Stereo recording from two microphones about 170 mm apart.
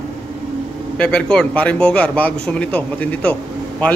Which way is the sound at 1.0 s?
5° left (ahead or behind).